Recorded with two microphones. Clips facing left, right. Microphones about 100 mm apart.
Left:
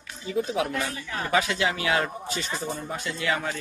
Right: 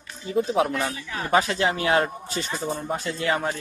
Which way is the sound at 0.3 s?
40° right (ahead or behind).